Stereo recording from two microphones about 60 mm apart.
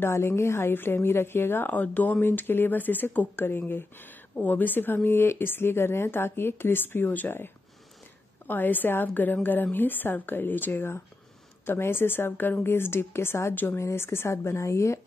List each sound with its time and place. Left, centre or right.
0.0 s speech: left
1.7 s speech: left
2.2 s speech: left